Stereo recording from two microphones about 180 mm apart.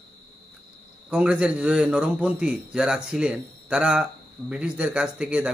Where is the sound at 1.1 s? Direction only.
5° right (ahead or behind).